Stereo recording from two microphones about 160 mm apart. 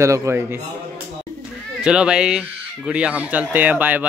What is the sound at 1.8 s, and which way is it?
A man's voice, 5° right (ahead or behind).